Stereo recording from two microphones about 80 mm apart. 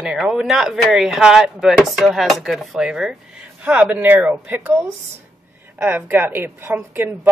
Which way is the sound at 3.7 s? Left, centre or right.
Right.